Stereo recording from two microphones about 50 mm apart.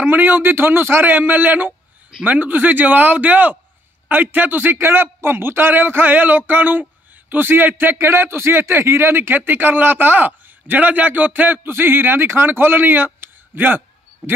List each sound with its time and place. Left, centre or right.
0.0 s speech: right